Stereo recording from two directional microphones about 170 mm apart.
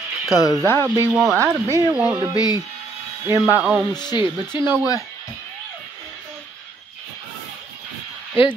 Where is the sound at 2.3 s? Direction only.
25° left (ahead or behind).